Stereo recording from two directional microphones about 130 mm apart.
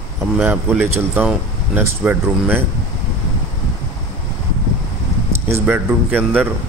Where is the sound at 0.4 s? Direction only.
15° right (ahead or behind).